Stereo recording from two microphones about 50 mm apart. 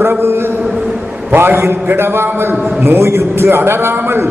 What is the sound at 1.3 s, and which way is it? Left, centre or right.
A man's voice, right.